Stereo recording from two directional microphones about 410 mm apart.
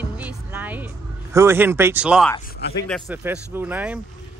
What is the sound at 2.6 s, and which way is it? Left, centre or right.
Speech, left.